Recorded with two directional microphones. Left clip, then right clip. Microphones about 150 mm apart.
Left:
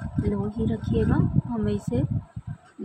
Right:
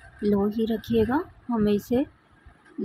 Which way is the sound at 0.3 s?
25° right (ahead or behind).